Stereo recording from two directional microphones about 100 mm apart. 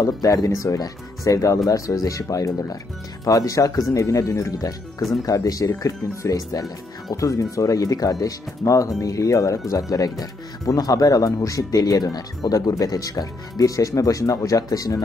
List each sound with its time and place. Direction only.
0.0 s speech: 35° left (ahead or behind)